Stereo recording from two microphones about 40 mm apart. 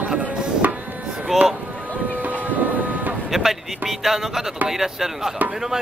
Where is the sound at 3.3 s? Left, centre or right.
Centre.